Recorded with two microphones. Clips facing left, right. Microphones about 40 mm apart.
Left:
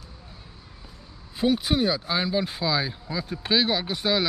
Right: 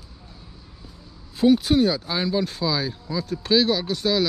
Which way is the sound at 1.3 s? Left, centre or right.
Centre.